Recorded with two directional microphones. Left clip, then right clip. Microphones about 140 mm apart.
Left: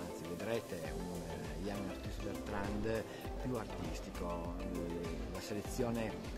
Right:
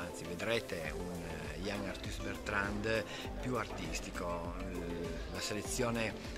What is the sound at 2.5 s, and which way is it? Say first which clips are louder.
Speech: right 5 dB; 25° left (ahead or behind).